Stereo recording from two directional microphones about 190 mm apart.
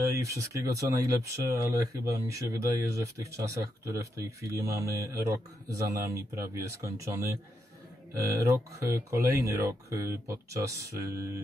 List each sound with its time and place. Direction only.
0.1 s speech: 15° right (ahead or behind)